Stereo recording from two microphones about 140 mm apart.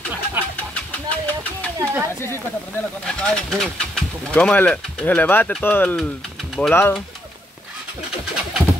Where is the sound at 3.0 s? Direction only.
5° left (ahead or behind).